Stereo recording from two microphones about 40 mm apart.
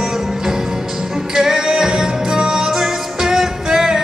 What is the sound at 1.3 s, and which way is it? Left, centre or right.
Music, centre.